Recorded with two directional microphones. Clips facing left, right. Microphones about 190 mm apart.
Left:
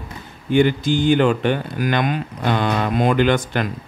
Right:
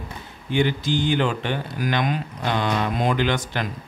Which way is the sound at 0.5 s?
50° left (ahead or behind).